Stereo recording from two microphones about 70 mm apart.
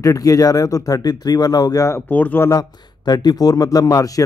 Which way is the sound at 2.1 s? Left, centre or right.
Left.